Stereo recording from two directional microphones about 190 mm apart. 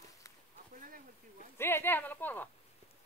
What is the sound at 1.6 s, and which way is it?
Speech, 10° left (ahead or behind).